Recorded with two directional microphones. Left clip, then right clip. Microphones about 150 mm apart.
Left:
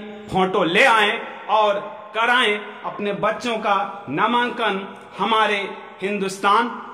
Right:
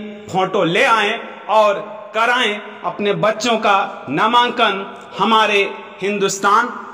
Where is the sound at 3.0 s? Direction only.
45° right (ahead or behind).